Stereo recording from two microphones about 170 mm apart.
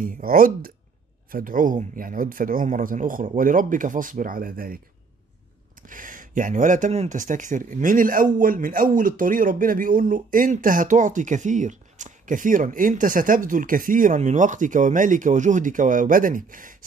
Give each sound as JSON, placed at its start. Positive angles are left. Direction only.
{"t": 0.0, "sound": "speech", "side_deg": -55}
{"t": 5.8, "sound": "speech", "side_deg": -50}